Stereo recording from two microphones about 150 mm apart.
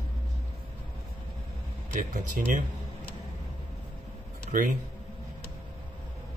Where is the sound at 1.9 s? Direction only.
60° right (ahead or behind).